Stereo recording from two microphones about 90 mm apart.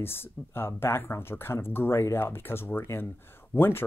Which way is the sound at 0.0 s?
25° left (ahead or behind).